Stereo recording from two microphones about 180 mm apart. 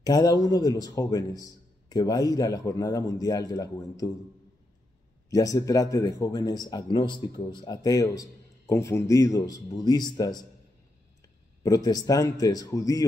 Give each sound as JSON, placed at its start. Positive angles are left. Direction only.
{"t": 0.0, "sound": "speech", "side_deg": 20}
{"t": 5.3, "sound": "speech", "side_deg": 20}
{"t": 11.6, "sound": "speech", "side_deg": 20}